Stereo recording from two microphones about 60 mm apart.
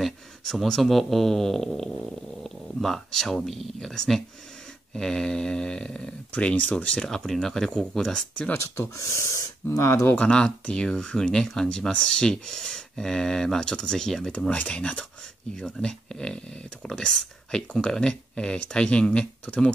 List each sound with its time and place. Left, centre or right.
0.0 s speech: centre
7.1 s speech: centre
8.6 s speech: left
8.9 s speech: left
10.1 s speech: centre